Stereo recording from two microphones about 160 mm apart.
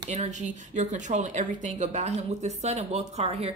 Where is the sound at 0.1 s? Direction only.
50° right (ahead or behind).